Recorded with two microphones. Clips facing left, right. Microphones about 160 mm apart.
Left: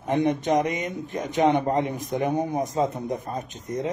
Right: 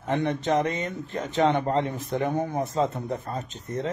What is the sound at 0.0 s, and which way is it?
A man's voice, 15° left (ahead or behind).